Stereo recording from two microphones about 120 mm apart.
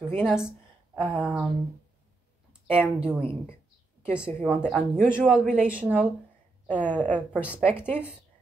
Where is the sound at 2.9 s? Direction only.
10° right (ahead or behind).